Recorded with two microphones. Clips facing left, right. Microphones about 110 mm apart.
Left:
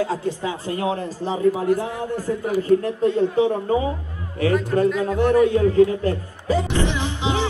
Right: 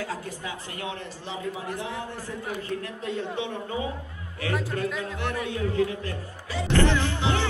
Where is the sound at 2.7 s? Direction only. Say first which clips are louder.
Left 16 dB; 35° left (ahead or behind).